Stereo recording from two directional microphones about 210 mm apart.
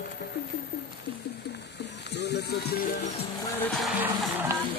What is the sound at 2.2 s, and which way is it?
Music, 50° left (ahead or behind).